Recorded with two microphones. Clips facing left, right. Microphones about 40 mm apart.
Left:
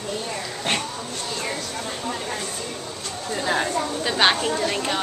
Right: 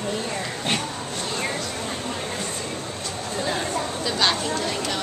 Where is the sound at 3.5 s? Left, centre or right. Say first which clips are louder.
Left 4 dB; left.